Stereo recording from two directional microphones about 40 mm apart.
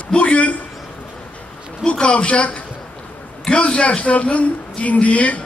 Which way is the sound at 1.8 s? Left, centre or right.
Left.